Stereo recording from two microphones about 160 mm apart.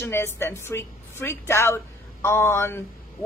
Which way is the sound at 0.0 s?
15° left (ahead or behind).